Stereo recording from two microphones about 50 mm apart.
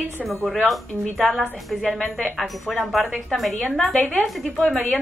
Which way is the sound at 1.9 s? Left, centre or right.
Left.